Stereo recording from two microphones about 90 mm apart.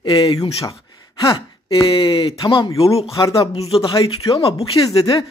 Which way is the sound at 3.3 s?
90° left.